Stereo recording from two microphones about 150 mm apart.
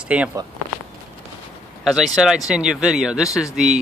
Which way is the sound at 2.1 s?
5° right (ahead or behind).